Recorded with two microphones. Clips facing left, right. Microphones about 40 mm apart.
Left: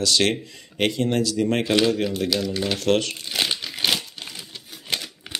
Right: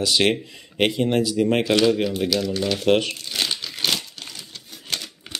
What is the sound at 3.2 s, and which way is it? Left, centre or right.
Crumpling, centre.